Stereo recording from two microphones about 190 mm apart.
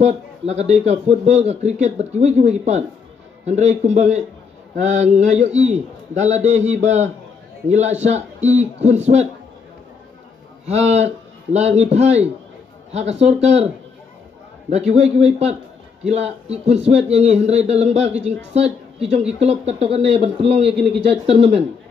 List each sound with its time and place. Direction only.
0.0 s speech: 35° right (ahead or behind)
10.7 s speech: 35° right (ahead or behind)
14.7 s speech: 35° right (ahead or behind)
19.4 s speech: 30° right (ahead or behind)